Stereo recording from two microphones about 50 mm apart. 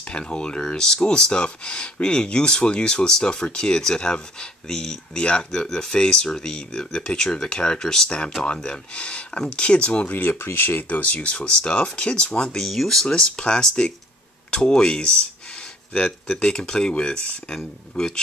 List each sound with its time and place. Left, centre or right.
0.1 s speech: left
10.0 s speech: left
11.0 s speech: left
12.6 s speech: centre
16.3 s speech: centre